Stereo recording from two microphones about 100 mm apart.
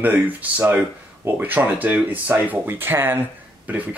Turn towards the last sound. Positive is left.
turn(degrees=-15)  # may be behind; listen again after turning